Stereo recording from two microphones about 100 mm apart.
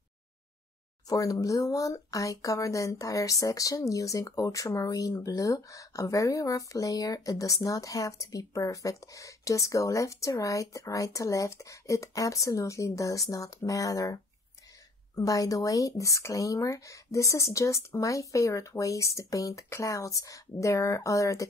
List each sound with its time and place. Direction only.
1.0 s speech: 35° left (ahead or behind)